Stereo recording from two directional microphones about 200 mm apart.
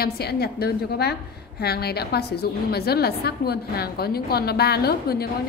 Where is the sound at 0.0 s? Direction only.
50° left (ahead or behind).